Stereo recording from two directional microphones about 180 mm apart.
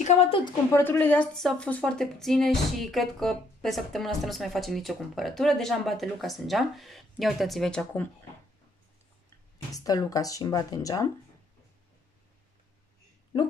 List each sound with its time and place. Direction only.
0.0 s a woman's voice: 35° left (ahead or behind)
0.7 s a woman's voice: 10° left (ahead or behind)
9.7 s speech: 20° left (ahead or behind)